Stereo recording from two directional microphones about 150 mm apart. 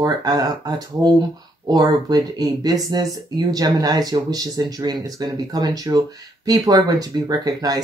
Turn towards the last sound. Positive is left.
turn(degrees=-25)  # may be behind; listen again after turning